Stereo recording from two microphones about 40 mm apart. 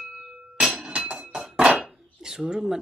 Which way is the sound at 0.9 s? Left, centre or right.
Right.